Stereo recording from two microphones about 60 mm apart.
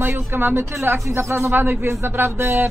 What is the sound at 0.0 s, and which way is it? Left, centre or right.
Speech, right.